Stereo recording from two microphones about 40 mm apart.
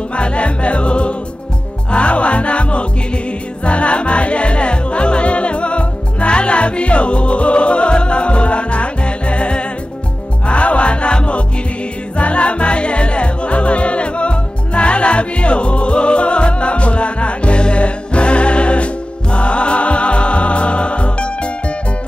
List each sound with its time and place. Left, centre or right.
0.1 s music: left